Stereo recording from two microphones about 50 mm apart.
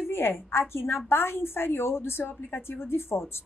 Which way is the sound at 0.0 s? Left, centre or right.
Left.